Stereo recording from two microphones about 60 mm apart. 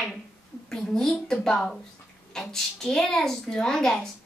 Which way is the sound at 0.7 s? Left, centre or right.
Centre.